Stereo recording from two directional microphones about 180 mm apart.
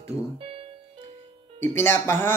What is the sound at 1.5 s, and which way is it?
Speech, 10° left (ahead or behind).